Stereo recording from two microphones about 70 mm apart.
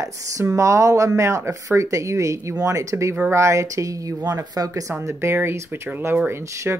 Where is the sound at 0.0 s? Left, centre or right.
Right.